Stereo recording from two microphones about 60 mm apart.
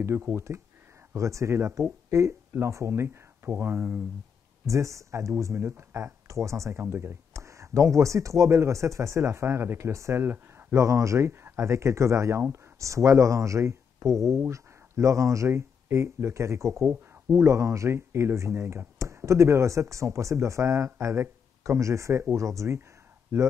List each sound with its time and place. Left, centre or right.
1.1 s speech: right
4.6 s speech: right
6.8 s speech: right
7.3 s speech: right
10.2 s a sound: right
10.7 s speech: right
16.9 s a sound: right
17.4 s speech: right